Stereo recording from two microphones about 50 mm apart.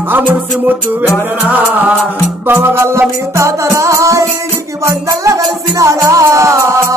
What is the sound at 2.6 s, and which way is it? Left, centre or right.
Music, right.